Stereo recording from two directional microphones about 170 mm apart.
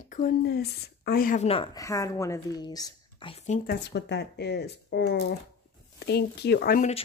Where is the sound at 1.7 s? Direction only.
20° left (ahead or behind); by 3.5 s 35° left (ahead or behind).